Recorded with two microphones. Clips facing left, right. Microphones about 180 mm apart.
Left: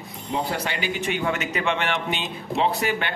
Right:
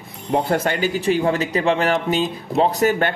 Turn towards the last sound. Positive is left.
turn(degrees=-45)  # may be behind; listen again after turning